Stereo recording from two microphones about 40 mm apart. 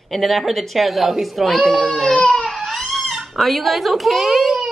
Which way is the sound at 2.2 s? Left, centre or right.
Centre.